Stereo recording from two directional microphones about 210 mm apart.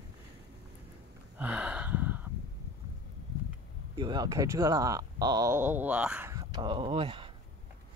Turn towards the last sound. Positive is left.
turn(degrees=-25)  # may be behind; listen again after turning